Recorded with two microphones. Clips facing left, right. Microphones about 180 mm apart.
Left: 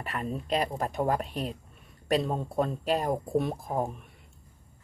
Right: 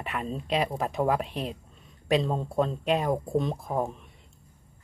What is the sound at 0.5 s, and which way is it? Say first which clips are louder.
Speech: right 2 dB; centre (ahead or behind).